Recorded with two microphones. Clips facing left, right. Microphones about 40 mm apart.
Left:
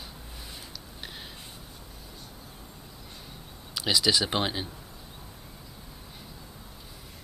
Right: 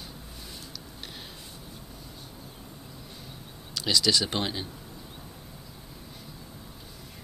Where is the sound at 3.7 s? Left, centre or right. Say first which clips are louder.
Even; centre.